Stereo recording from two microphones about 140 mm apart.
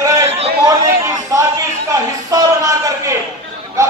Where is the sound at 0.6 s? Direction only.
25° right (ahead or behind).